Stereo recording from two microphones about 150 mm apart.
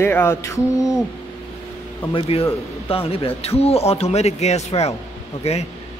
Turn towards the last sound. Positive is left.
turn(degrees=45)  # may be behind; listen again after turning